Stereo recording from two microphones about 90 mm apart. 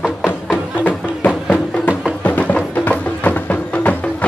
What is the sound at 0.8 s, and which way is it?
Music, 20° left (ahead or behind).